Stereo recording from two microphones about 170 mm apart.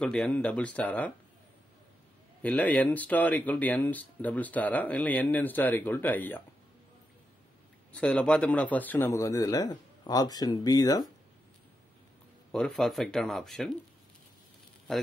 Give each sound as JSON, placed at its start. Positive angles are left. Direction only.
{"t": 0.0, "sound": "speech", "side_deg": 5}
{"t": 2.4, "sound": "speech", "side_deg": 10}
{"t": 7.9, "sound": "a man's voice", "side_deg": 5}
{"t": 12.4, "sound": "speech", "side_deg": 5}